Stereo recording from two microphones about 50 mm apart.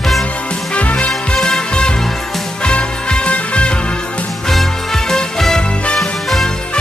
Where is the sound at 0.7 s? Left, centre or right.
Left.